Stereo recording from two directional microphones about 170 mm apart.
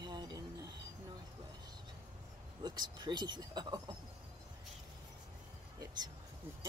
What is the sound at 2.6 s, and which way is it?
Speech, 25° right (ahead or behind).